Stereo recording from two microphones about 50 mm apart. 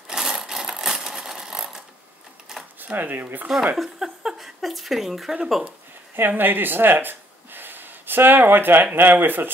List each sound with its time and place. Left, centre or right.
0.2 s sewing machine: centre
2.8 s speech: right
3.4 s speech: centre
6.1 s speech: right